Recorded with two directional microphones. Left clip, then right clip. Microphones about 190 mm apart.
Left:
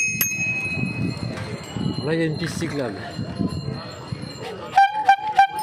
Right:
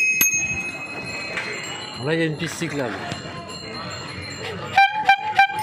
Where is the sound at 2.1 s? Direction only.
15° left (ahead or behind).